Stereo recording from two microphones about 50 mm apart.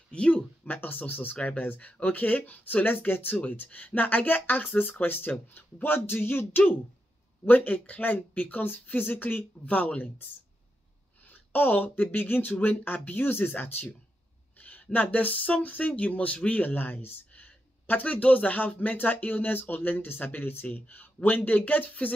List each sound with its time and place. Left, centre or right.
0.1 s speech: left
0.7 s speech: left
7.4 s speech: left
11.2 s speech: left
17.3 s a sound: left
18.7 s speech: left